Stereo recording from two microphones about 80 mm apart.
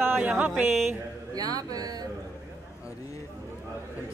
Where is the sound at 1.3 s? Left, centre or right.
Right.